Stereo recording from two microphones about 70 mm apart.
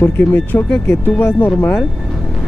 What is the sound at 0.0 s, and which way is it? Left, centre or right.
Speech, left.